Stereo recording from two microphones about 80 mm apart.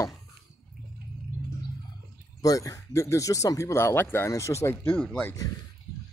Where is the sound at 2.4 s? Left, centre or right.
Left.